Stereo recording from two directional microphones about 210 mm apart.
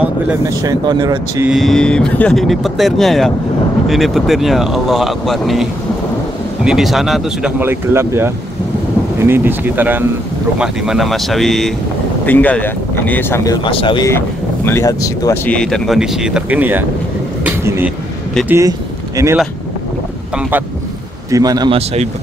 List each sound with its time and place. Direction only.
0.6 s speech: 20° right (ahead or behind)
1.5 s speech: centre (ahead or behind)
15.5 s speech: 5° left (ahead or behind)
17.5 s a sound: 10° right (ahead or behind)
21.3 s speech: 15° right (ahead or behind)